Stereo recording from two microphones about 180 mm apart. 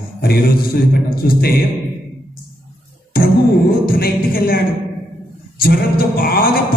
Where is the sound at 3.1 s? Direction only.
55° left (ahead or behind).